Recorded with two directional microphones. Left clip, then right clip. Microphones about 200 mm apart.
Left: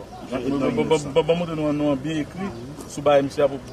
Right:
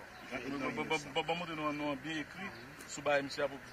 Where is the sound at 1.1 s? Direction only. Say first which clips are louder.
Left 16 dB; 35° left (ahead or behind).